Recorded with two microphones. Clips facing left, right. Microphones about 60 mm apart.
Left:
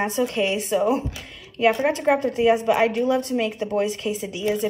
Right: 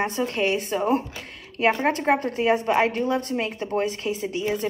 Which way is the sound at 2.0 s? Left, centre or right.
Right.